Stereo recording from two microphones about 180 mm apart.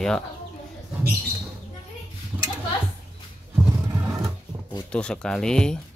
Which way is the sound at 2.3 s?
5° right (ahead or behind).